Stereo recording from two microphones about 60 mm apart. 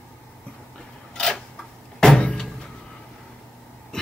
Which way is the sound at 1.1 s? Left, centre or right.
Centre.